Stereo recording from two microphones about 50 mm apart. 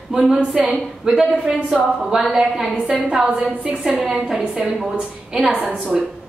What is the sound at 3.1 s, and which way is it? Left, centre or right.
Speech, centre.